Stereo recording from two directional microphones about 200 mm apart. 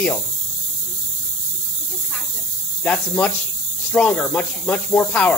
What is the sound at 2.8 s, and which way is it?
Speech, 5° left (ahead or behind).